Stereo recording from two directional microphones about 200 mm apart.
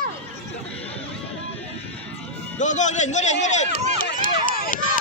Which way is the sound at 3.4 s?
35° left (ahead or behind).